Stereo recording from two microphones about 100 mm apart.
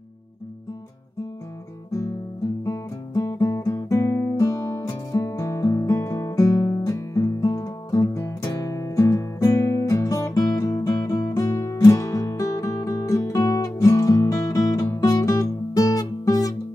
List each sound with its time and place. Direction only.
2.6 s music: 35° left (ahead or behind)